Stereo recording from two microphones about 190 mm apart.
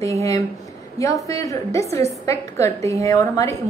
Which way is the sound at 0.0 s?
15° left (ahead or behind).